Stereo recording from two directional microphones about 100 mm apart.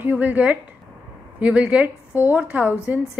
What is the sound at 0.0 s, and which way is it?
A woman's voice, 15° right (ahead or behind).